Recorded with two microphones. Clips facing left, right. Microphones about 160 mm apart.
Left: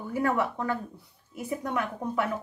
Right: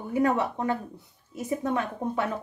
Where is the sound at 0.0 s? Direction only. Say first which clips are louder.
Right 2 dB; 20° right (ahead or behind).